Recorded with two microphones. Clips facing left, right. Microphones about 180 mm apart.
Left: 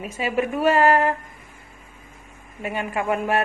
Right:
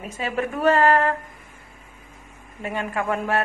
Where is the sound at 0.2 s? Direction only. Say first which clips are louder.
Left 1 dB; 10° left (ahead or behind).